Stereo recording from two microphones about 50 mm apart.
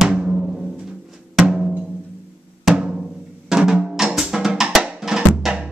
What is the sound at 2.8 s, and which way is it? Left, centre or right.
Drum, centre.